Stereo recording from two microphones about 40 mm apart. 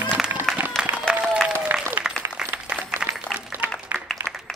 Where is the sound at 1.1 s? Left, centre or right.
Centre.